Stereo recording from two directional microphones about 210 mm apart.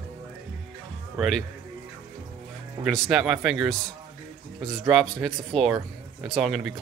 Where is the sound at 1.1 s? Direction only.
Centre (ahead or behind).